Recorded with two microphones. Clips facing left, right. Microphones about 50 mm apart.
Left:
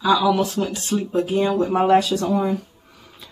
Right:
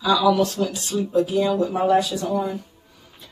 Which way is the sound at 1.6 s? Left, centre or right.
Left.